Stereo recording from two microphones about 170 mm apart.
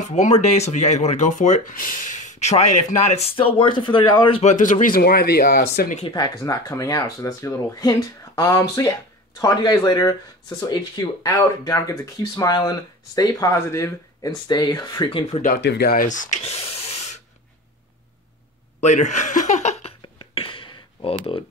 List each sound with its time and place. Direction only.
0.1 s speech: 45° left (ahead or behind)
3.3 s speech: 30° left (ahead or behind); by 5.9 s 70° left (ahead or behind)
6.0 s speech: 25° left (ahead or behind)
15.6 s speech: 75° left (ahead or behind); by 17.2 s 40° left (ahead or behind)
18.8 s a sound: 45° left (ahead or behind)